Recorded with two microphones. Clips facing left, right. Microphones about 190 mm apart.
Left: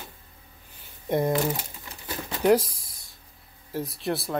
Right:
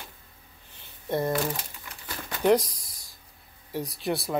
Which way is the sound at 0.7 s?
15° left (ahead or behind).